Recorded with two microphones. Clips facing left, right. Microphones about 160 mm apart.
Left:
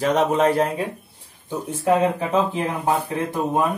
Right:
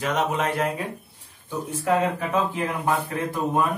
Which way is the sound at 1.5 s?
20° left (ahead or behind).